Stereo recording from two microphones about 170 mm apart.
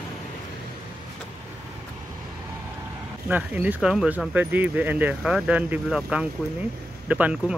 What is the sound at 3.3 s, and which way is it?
Speech, 10° right (ahead or behind).